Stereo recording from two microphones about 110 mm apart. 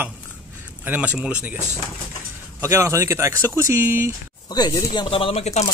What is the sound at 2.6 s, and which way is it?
Speech, 25° right (ahead or behind).